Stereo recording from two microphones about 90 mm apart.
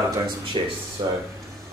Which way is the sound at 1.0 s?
50° right (ahead or behind).